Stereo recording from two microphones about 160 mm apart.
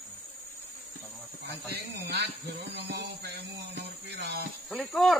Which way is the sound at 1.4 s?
90° right.